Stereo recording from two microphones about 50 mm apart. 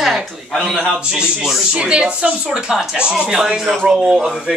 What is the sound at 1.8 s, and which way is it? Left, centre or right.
A woman's voice, centre.